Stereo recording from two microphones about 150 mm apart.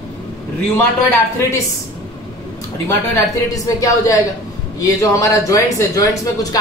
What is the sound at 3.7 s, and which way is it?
A woman's voice, 20° left (ahead or behind).